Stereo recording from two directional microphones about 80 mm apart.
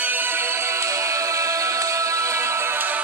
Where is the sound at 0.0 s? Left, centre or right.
Right.